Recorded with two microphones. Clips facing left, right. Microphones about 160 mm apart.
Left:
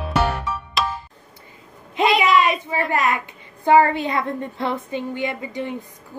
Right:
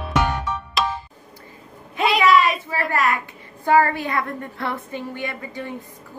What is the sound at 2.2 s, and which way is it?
A woman's voice, 20° left (ahead or behind).